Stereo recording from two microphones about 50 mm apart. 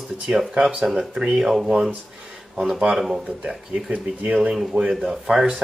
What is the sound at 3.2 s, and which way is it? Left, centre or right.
Speech, right.